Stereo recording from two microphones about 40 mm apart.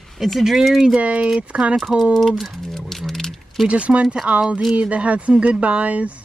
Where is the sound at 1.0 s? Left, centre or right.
Right.